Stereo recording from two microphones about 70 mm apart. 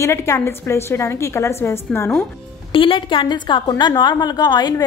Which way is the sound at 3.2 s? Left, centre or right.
Left.